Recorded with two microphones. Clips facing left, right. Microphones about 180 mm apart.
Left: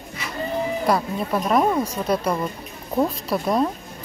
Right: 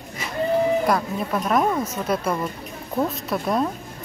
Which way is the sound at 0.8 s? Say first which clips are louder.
Left 1 dB; centre (ahead or behind).